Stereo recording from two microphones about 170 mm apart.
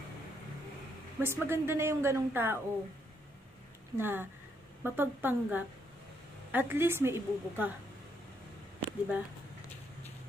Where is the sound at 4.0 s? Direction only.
10° right (ahead or behind).